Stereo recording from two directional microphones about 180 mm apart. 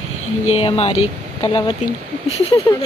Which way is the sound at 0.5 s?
30° left (ahead or behind).